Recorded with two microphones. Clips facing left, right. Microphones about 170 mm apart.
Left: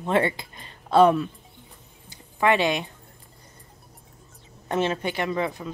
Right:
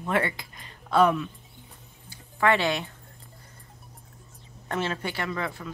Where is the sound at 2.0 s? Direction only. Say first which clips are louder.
Left 2 dB; 20° left (ahead or behind).